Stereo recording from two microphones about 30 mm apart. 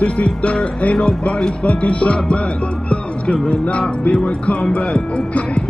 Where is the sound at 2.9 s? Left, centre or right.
Left.